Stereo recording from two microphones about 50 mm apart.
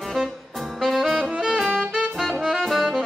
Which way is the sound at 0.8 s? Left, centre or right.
Centre.